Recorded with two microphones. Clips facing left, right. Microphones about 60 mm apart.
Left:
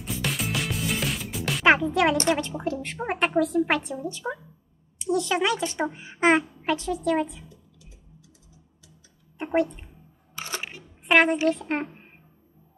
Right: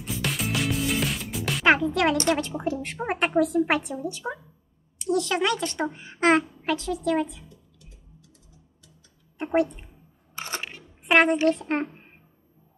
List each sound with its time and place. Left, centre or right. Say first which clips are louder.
0.0 s music: even; centre
2.2 s a woman's voice: even; centre
9.4 s a woman's voice: right 1 dB; centre
10.3 s camera: right 1 dB; right
10.6 s single-lens reflex camera: even; centre